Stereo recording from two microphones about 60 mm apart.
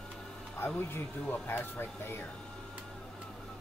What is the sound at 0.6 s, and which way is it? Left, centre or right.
Speech, left.